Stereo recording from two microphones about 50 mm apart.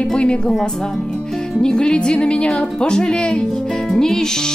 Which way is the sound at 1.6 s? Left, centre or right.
Centre.